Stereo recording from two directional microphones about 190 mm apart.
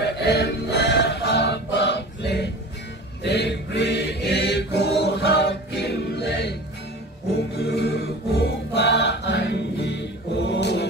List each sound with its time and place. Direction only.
0.0 s music: 60° left (ahead or behind)
3.2 s mantra: 60° left (ahead or behind)
7.3 s music: 60° left (ahead or behind)